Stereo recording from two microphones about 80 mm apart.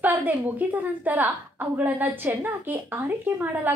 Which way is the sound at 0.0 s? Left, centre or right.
Right.